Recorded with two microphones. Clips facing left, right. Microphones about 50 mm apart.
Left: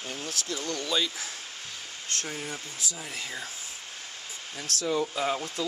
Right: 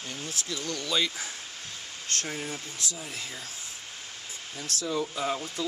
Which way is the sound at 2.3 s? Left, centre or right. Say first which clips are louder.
Right 1 dB; centre.